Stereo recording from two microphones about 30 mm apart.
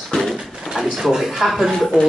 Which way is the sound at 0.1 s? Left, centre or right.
Left.